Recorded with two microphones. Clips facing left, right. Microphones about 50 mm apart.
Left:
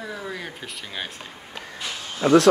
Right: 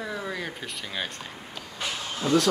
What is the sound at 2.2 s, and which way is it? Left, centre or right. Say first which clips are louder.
Speech: left 7 dB; left.